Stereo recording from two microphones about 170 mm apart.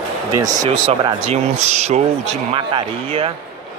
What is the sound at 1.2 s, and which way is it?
Speech, 40° right (ahead or behind).